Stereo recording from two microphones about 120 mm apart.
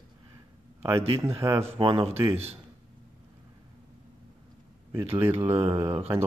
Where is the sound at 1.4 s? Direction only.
20° right (ahead or behind).